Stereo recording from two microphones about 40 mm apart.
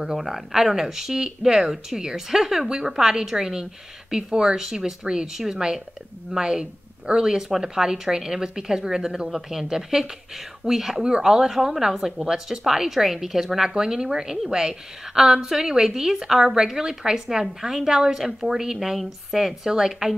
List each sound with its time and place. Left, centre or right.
0.0 s speech: centre